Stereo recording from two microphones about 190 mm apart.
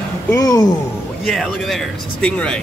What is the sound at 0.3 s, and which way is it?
Speech, 15° left (ahead or behind).